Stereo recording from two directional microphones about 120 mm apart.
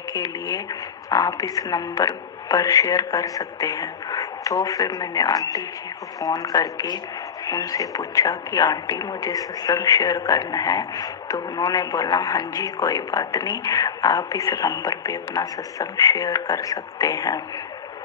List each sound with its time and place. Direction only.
0.1 s speech: 30° left (ahead or behind)